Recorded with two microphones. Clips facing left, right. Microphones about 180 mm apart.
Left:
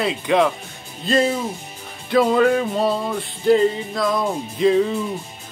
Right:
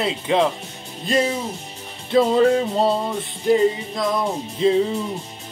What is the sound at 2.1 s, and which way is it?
Music, 30° right (ahead or behind).